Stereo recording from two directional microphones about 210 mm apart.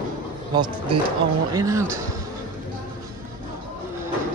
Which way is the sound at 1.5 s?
15° right (ahead or behind).